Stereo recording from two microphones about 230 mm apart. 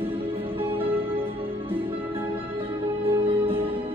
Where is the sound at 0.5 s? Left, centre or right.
Right.